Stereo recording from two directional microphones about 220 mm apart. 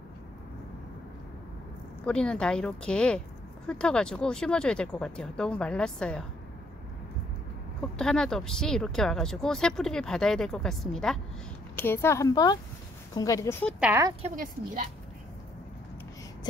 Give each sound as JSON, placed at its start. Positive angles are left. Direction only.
{"t": 2.0, "sound": "speech", "side_deg": 5}
{"t": 8.0, "sound": "a woman's voice", "side_deg": 5}
{"t": 13.7, "sound": "speech", "side_deg": -5}
{"t": 14.2, "sound": "a woman's voice", "side_deg": -40}